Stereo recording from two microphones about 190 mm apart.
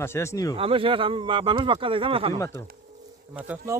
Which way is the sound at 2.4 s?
15° left (ahead or behind).